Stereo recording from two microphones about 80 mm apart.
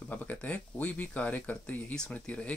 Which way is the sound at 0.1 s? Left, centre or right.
Left.